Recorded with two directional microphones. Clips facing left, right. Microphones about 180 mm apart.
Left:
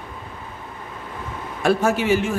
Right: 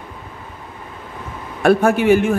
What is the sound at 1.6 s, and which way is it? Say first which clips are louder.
Speech: right 5 dB; 60° right (ahead or behind).